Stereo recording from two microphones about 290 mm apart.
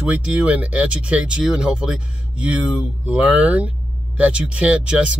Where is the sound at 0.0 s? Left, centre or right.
Centre.